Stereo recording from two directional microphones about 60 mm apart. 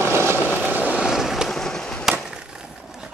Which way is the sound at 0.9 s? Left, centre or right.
Centre.